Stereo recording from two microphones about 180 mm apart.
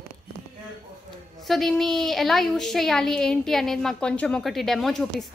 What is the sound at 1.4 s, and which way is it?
A woman's voice, centre (ahead or behind).